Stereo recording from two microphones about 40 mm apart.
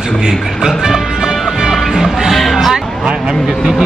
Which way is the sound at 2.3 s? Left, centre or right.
Centre.